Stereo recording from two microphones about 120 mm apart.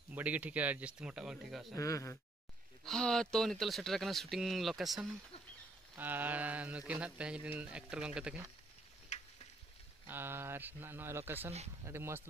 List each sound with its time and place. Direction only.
0.1 s speech: 15° right (ahead or behind)
1.7 s speech: 25° left (ahead or behind)
2.8 s speech: 5° left (ahead or behind)
5.9 s speech: 15° right (ahead or behind)
10.0 s speech: 20° right (ahead or behind)